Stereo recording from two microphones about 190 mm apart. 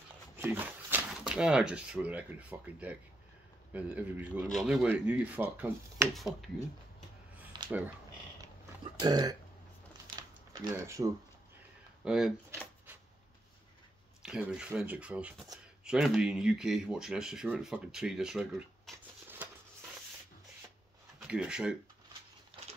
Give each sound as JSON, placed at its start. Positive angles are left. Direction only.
{"t": 0.4, "sound": "speech", "side_deg": -10}
{"t": 7.5, "sound": "a sound", "side_deg": -25}
{"t": 9.0, "sound": "speech", "side_deg": -20}
{"t": 10.1, "sound": "typing", "side_deg": -20}
{"t": 12.0, "sound": "speech", "side_deg": -5}
{"t": 12.4, "sound": "a sound", "side_deg": -10}
{"t": 14.2, "sound": "speech", "side_deg": -5}
{"t": 21.2, "sound": "speech", "side_deg": -5}